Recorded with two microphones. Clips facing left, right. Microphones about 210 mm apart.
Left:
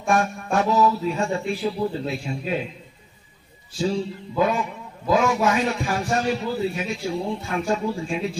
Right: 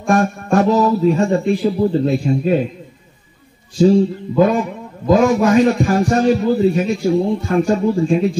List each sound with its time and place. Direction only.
0.1 s a man's voice: 45° right (ahead or behind)
3.7 s a man's voice: 45° right (ahead or behind)